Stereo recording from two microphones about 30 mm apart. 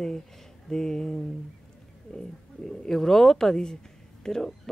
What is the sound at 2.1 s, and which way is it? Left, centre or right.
A woman's voice, centre.